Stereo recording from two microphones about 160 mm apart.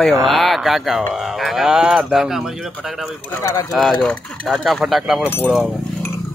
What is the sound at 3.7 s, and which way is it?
Speech, 5° left (ahead or behind).